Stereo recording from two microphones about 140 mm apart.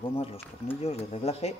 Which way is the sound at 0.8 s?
45° left (ahead or behind).